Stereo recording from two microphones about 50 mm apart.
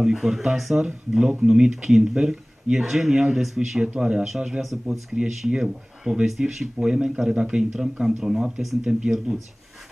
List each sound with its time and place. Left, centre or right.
0.0 s speech: centre